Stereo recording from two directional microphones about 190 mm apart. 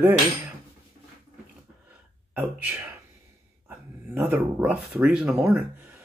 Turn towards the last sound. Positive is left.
turn(degrees=-5)  # may be behind; listen again after turning